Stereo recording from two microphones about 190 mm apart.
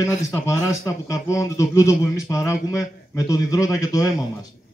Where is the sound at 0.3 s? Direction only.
15° left (ahead or behind).